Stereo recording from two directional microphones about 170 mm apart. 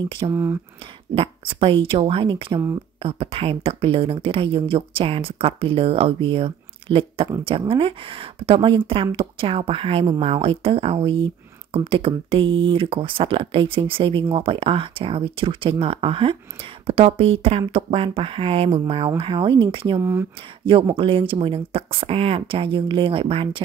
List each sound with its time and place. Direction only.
0.3 s speech: 15° right (ahead or behind)
1.1 s speech: 35° right (ahead or behind)
20.0 s speech: 15° right (ahead or behind)
20.6 s speech: 30° right (ahead or behind)